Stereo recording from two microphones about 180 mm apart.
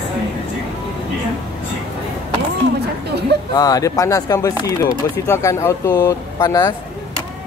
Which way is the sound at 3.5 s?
20° left (ahead or behind).